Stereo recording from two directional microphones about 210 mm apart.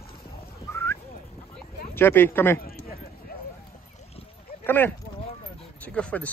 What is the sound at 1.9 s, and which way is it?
Speech, 10° left (ahead or behind).